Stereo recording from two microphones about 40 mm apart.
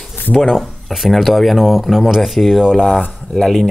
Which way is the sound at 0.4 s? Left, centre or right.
Centre.